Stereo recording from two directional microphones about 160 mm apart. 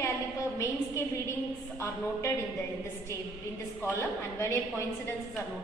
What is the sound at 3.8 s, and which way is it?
A woman's voice, 15° left (ahead or behind).